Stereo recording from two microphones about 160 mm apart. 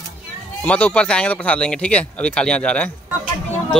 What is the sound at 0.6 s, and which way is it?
Speech, 10° left (ahead or behind).